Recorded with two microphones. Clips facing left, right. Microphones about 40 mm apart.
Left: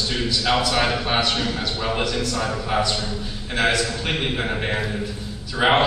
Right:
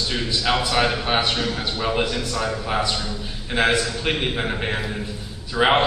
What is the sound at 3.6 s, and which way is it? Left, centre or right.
Speech, right.